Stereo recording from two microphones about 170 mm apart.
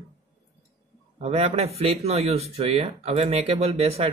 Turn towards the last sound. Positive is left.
turn(degrees=-35)  # may be behind; listen again after turning